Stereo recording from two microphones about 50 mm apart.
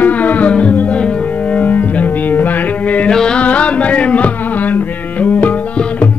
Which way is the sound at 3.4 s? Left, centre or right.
Left.